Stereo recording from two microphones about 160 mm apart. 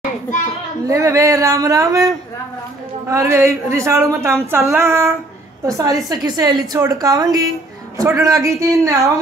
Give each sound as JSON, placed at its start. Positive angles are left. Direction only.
{"t": 0.8, "sound": "a woman's voice", "side_deg": -20}